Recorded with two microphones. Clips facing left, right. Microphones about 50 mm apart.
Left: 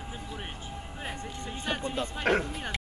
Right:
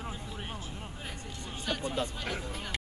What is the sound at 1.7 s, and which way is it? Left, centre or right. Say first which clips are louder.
Music: left 2 dB; left.